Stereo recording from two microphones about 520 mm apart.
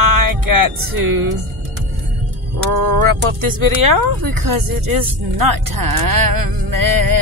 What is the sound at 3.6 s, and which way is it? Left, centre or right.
Speech, right.